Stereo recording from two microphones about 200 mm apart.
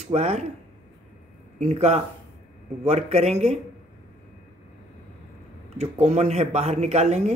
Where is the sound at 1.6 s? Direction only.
35° right (ahead or behind).